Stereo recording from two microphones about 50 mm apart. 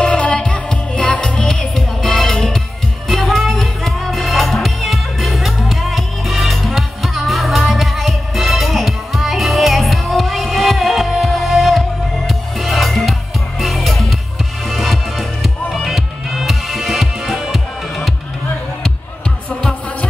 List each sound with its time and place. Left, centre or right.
0.0 s music: left; by 18.1 s centre